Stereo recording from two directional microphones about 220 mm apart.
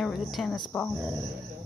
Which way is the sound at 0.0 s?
Centre (ahead or behind).